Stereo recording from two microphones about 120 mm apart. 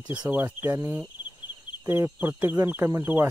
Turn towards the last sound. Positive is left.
turn(degrees=-20)  # may be behind; listen again after turning